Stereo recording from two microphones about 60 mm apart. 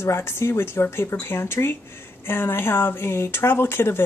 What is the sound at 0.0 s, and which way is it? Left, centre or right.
Speech, left.